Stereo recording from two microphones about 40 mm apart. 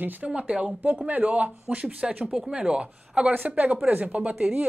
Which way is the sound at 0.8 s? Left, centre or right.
Right.